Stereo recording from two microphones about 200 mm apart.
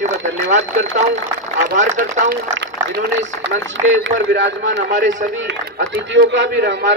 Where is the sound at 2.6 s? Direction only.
60° right (ahead or behind).